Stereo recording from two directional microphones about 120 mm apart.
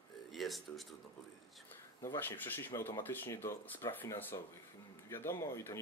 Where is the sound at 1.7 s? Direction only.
15° left (ahead or behind).